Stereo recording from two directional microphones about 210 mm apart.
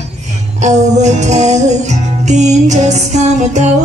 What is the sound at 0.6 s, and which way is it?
Music, 35° right (ahead or behind).